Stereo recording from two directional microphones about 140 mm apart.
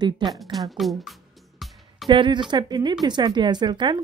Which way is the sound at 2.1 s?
35° right (ahead or behind).